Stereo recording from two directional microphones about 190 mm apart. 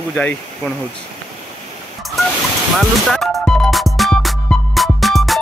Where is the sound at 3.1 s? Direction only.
Centre (ahead or behind).